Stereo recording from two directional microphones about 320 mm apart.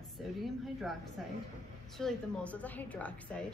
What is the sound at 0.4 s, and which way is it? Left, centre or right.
Speech, centre.